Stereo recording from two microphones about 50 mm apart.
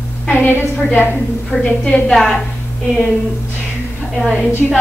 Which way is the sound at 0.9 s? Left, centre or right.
Left.